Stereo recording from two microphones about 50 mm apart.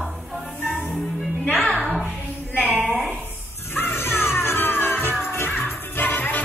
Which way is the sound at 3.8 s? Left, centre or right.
Left.